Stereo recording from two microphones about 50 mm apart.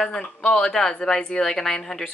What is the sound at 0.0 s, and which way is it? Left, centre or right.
Speech, centre.